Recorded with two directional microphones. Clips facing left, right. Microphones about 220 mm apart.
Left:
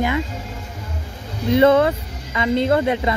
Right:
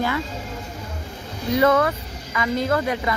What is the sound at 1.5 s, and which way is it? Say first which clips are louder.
Speech: left 4 dB; 25° left (ahead or behind).